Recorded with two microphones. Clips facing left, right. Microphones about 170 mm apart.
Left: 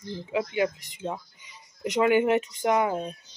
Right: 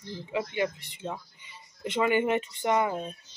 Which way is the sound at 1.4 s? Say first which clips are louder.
Left 4 dB; 90° left.